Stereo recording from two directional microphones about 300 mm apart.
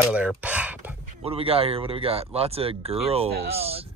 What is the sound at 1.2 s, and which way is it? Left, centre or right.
Speech, centre.